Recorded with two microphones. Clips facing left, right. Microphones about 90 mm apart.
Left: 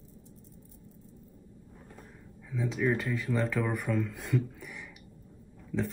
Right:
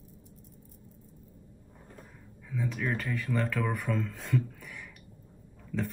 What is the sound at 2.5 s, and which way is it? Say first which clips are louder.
Speech: left 3 dB; 15° left (ahead or behind).